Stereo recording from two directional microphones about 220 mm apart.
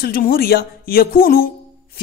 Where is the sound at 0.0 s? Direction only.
40° left (ahead or behind).